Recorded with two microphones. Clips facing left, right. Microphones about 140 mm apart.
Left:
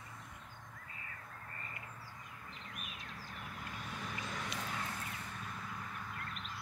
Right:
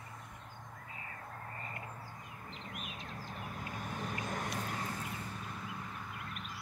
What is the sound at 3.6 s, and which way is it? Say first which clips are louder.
Vehicle: right 4 dB; 50° right (ahead or behind).